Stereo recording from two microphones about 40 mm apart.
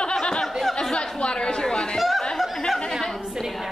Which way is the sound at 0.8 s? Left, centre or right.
Centre.